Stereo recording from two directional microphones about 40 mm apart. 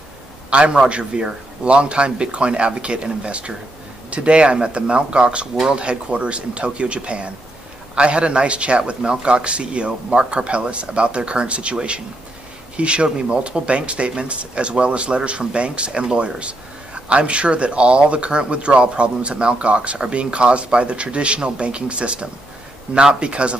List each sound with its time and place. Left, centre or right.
0.5 s speech: right